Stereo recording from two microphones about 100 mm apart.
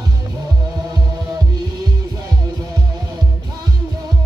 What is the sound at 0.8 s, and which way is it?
Music, 40° right (ahead or behind).